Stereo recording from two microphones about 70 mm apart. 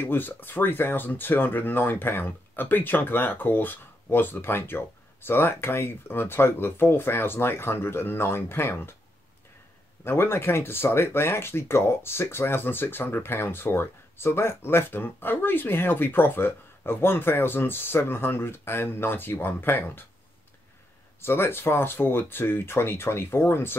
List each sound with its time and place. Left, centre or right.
0.0 s speech: left
10.0 s speech: left
21.2 s speech: left